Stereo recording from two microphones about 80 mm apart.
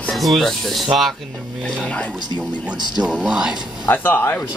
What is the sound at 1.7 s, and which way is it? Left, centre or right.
Speech, centre.